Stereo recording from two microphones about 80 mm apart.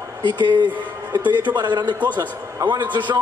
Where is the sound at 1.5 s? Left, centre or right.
Right.